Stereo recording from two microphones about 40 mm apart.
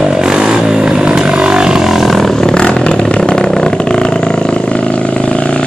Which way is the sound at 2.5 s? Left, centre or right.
Left.